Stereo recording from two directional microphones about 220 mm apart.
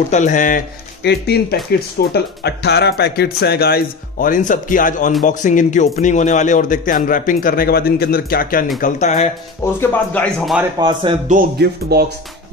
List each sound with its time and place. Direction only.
0.1 s speech: 35° left (ahead or behind)
1.0 s speech: 50° left (ahead or behind); by 9.3 s 30° left (ahead or behind)
9.8 s a man's voice: 5° left (ahead or behind)
10.8 s speech: 20° right (ahead or behind)
11.2 s speech: 40° right (ahead or behind)